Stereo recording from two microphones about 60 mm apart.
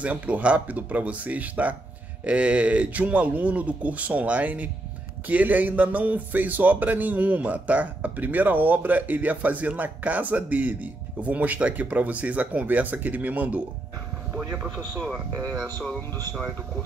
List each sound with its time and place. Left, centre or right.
0.0 s speech: right
15.3 s speech: right